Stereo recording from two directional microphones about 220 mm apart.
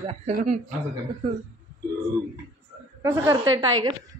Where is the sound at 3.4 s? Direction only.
65° right (ahead or behind).